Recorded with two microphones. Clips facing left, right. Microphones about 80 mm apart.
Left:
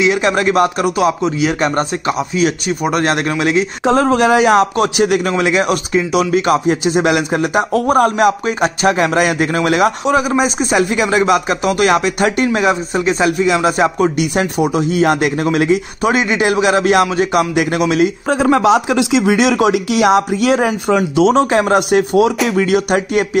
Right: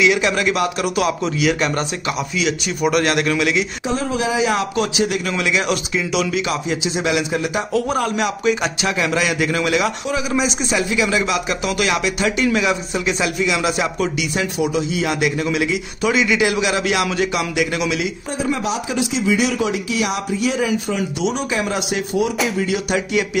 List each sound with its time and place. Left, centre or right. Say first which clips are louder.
0.0 s speech: left 3 dB; left
3.8 s speech: left 9 dB; left
5.3 s speech: left 5 dB; left
18.3 s speech: left 10 dB; left